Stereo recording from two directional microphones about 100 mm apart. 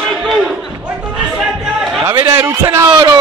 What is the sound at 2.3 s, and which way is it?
Speech, 25° right (ahead or behind).